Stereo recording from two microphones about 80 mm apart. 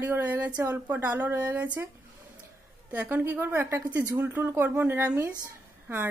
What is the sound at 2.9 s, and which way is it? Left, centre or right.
A woman's voice, centre.